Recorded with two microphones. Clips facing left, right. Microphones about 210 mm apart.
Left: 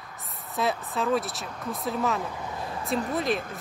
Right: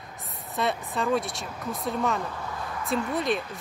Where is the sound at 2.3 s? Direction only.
20° left (ahead or behind).